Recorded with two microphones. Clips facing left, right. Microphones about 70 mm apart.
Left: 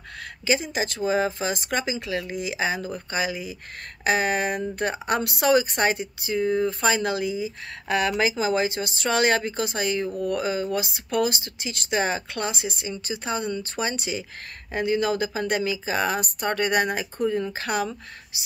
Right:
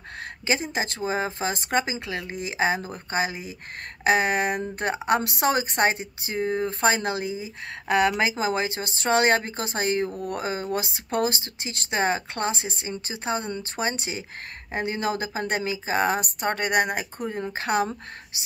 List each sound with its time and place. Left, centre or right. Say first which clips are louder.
0.5 s speech: left 2 dB; right
4.0 s speech: right 1 dB; right
17.3 s speech: even; right